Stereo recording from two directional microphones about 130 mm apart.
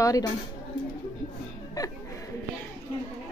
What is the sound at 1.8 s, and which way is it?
Speech, 30° left (ahead or behind).